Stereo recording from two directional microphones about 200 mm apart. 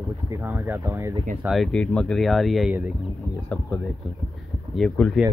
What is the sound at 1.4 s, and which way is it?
Speech, centre (ahead or behind).